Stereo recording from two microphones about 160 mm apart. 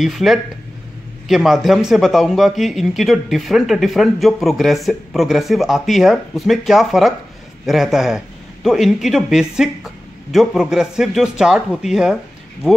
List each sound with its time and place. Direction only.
0.0 s speech: centre (ahead or behind)